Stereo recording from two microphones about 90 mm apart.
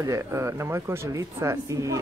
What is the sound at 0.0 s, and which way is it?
Speech, 35° right (ahead or behind).